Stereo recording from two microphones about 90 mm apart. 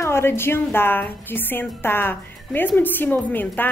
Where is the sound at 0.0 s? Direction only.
30° left (ahead or behind).